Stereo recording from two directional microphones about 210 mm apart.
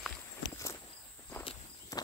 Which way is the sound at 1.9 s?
15° left (ahead or behind).